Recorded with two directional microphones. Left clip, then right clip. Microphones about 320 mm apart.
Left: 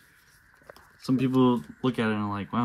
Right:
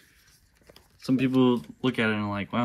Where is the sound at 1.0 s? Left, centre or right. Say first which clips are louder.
Even; centre.